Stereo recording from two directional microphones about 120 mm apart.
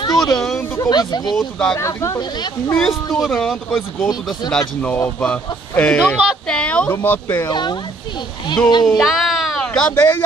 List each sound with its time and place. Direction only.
0.0 s a sound: 35° left (ahead or behind)
0.6 s speech: 30° left (ahead or behind)
1.3 s speech: 5° left (ahead or behind)
1.8 s speech: 25° left (ahead or behind)
2.7 s speech: centre (ahead or behind)
7.4 s speech: 40° left (ahead or behind)
8.8 s speech: centre (ahead or behind)